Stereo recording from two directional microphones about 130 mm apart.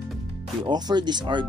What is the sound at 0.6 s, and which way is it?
Speech, 30° right (ahead or behind).